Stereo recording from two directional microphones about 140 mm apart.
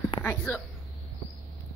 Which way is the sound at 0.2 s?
10° left (ahead or behind).